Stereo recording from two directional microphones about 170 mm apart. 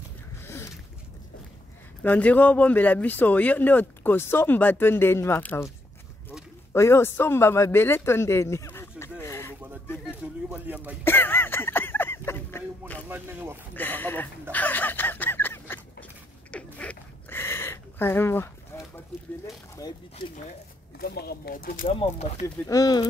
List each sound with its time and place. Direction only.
2.0 s speech: 10° left (ahead or behind)
6.7 s speech: 15° left (ahead or behind)
10.0 s speech: 10° right (ahead or behind)
11.1 s a sound: 10° left (ahead or behind)
13.1 s speech: 10° right (ahead or behind)
13.7 s speech: 10° left (ahead or behind)
14.5 s a sound: 10° left (ahead or behind)
19.8 s speech: 20° left (ahead or behind)
21.0 s speech: 65° left (ahead or behind)
22.7 s speech: 20° left (ahead or behind)